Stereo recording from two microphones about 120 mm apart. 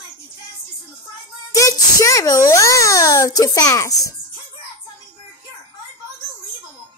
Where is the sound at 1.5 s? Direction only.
25° left (ahead or behind).